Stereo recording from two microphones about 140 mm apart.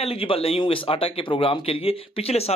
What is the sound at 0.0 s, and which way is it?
Speech, 45° left (ahead or behind).